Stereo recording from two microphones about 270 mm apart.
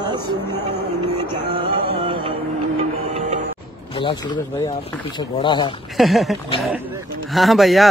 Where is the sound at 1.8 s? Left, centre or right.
Centre.